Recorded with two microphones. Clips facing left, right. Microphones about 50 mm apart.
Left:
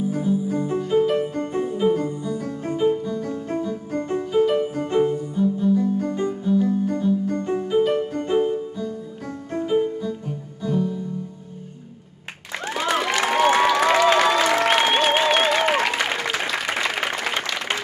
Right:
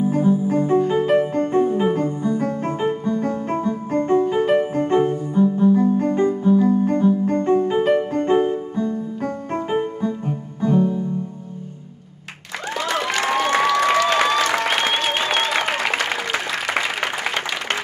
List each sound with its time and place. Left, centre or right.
0.0 s music: right
13.0 s applause: centre
15.6 s applause: centre